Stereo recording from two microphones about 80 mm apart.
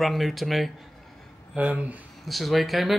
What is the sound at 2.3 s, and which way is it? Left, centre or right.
Speech, centre.